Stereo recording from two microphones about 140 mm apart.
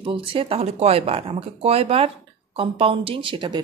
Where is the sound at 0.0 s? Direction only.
40° right (ahead or behind).